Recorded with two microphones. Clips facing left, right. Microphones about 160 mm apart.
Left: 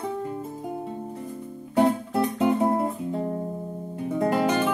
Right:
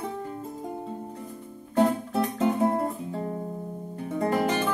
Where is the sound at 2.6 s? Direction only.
5° left (ahead or behind).